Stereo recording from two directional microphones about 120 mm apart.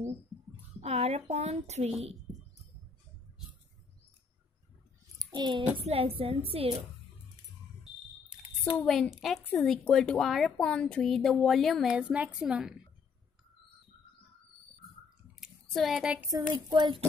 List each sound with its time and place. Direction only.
0.7 s a woman's voice: 65° right (ahead or behind)
5.2 s a child's voice: 40° right (ahead or behind)
5.9 s a woman's voice: 55° right (ahead or behind)
8.3 s a sound: 5° right (ahead or behind)
8.7 s speech: 5° left (ahead or behind)
9.4 s a woman's voice: 15° left (ahead or behind); by 12.7 s 5° right (ahead or behind)
15.4 s a sound: centre (ahead or behind)
16.3 s speech: 35° right (ahead or behind)